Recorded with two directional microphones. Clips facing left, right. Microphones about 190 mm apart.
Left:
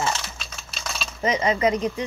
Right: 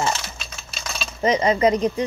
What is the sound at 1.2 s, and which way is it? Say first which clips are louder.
Speech: right 4 dB; 35° right (ahead or behind).